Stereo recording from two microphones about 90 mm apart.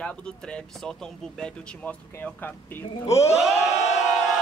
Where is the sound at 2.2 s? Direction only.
20° left (ahead or behind).